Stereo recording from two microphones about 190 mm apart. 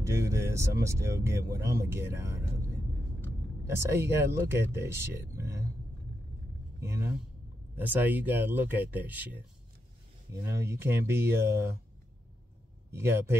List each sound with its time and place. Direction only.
0.0 s speech: 15° right (ahead or behind)
3.6 s speech: 15° right (ahead or behind)
6.8 s a sound: 15° right (ahead or behind)
7.7 s speech: 10° right (ahead or behind)
10.4 s speech: 15° right (ahead or behind)
12.9 s speech: 10° right (ahead or behind)